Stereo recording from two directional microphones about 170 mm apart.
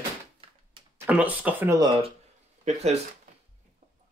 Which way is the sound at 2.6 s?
40° right (ahead or behind).